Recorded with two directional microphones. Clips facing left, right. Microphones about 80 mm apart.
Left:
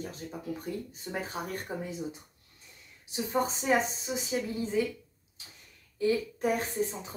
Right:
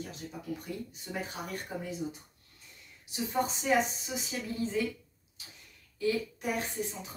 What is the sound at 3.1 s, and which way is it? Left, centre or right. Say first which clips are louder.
Speech: left 2 dB; left.